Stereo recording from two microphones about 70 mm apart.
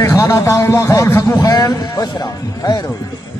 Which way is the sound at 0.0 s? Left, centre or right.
Left.